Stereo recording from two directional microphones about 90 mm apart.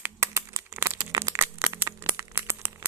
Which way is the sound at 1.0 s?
40° right (ahead or behind).